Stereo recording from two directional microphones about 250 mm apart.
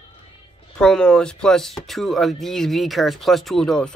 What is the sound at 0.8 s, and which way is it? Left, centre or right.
Speech, centre.